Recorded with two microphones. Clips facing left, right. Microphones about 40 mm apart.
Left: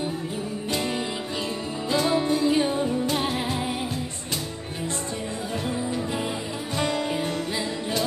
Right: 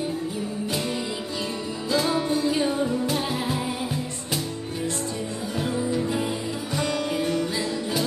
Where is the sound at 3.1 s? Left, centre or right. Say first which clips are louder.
Left 1 dB; left.